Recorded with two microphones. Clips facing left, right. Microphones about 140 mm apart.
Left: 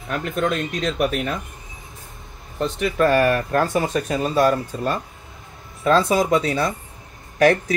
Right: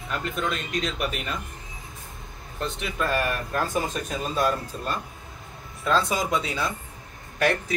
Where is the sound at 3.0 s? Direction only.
70° left (ahead or behind).